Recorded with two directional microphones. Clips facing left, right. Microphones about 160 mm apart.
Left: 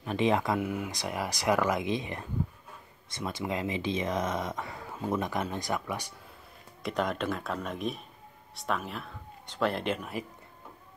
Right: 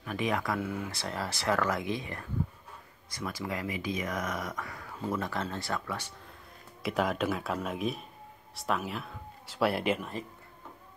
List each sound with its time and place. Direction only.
0.0 s speech: 25° left (ahead or behind)
6.8 s speech: 5° right (ahead or behind)